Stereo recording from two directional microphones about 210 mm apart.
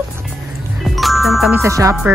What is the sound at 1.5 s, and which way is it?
Speech, 15° right (ahead or behind).